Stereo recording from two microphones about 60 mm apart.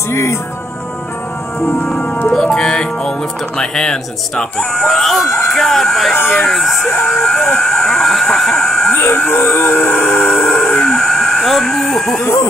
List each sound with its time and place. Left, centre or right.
0.1 s speech: left
1.7 s speech: centre
8.9 s speech: left
9.3 s howl: left; by 12.3 s centre